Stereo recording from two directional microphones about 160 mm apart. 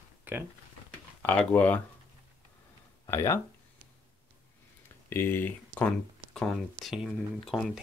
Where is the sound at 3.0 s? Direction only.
20° left (ahead or behind).